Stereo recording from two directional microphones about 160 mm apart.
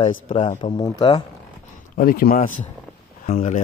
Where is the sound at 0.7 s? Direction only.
25° left (ahead or behind).